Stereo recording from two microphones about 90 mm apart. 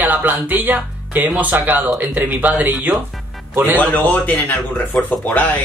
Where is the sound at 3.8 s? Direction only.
20° left (ahead or behind).